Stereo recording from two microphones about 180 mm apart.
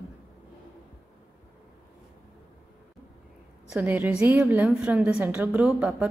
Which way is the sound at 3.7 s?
10° right (ahead or behind).